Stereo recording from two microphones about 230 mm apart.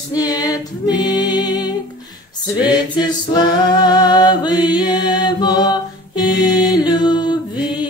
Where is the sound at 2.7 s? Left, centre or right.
Centre.